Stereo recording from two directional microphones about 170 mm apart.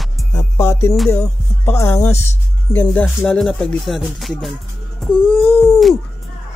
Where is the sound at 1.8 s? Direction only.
15° left (ahead or behind).